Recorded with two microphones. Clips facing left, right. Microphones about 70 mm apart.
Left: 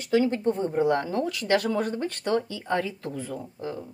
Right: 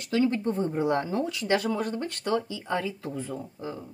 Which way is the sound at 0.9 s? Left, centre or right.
Right.